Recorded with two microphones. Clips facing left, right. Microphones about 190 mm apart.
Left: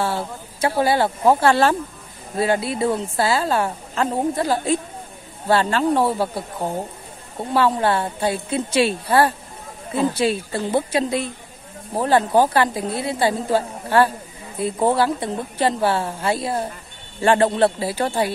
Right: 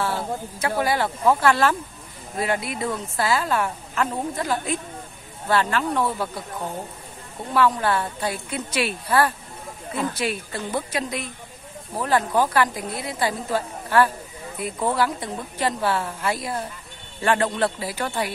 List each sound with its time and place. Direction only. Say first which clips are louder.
0.6 s a woman's voice: left 5 dB; 30° left (ahead or behind)